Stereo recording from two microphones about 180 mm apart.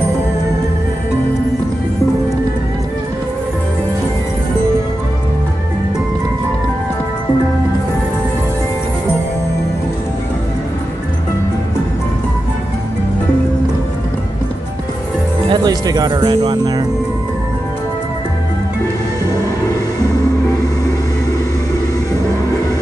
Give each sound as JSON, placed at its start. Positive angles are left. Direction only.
{"t": 15.5, "sound": "speech", "side_deg": -20}